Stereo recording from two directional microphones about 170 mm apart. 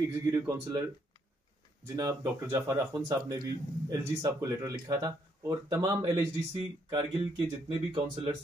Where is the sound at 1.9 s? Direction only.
15° right (ahead or behind); by 8.3 s 30° right (ahead or behind).